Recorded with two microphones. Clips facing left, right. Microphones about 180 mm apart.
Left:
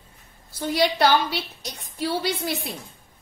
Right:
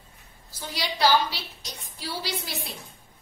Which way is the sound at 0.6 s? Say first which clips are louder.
Left 7 dB; 55° left (ahead or behind).